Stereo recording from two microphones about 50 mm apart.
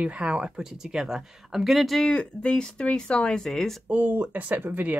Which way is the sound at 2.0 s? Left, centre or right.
Left.